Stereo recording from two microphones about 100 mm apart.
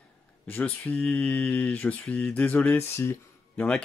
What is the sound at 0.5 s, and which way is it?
Speech, 15° left (ahead or behind).